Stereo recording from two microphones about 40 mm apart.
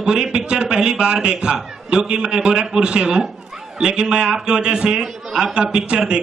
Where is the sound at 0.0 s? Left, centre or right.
Right.